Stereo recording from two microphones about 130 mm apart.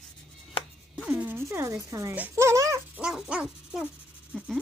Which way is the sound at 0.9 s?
10° right (ahead or behind).